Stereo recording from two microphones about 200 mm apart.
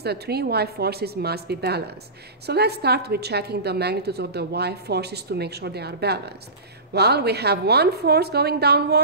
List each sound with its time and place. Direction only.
0.0 s a woman's voice: 55° right (ahead or behind)